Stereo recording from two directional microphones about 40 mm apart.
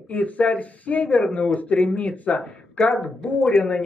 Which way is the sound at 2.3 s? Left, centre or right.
Centre.